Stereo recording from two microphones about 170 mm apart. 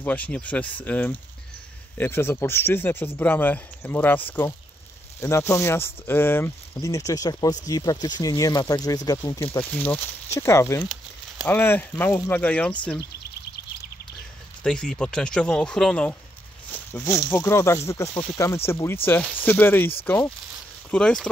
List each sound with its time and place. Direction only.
0.0 s speech: 10° left (ahead or behind)
14.6 s speech: 5° left (ahead or behind)